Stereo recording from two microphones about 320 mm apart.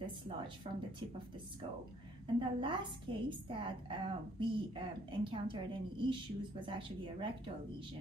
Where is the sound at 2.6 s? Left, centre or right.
Centre.